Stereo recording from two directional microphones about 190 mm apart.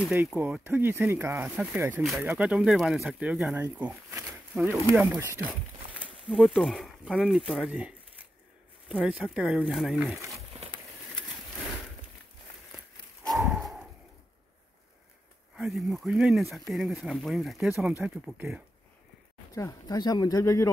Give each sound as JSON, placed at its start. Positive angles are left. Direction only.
{"t": 0.1, "sound": "speech", "side_deg": -10}
{"t": 13.2, "sound": "a sound", "side_deg": 0}
{"t": 15.5, "sound": "speech", "side_deg": 0}
{"t": 19.5, "sound": "speech", "side_deg": 20}